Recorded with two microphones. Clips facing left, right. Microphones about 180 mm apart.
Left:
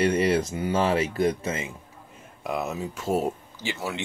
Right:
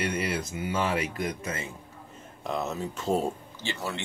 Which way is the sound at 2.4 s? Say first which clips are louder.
Left 2 dB; 10° left (ahead or behind).